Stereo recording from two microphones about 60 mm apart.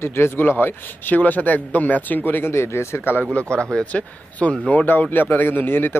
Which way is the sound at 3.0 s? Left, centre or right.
Left.